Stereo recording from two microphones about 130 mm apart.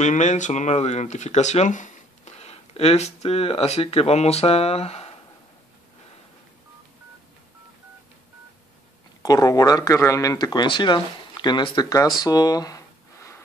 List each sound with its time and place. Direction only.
0.0 s speech: 65° left (ahead or behind)
9.2 s speech: 25° left (ahead or behind)
12.2 s a sound: 30° left (ahead or behind)